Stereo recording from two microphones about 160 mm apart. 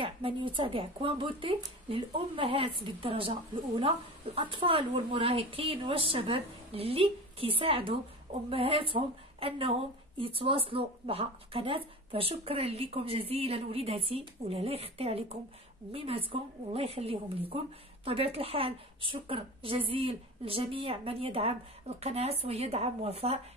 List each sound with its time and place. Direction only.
0.0 s a woman's voice: 30° right (ahead or behind)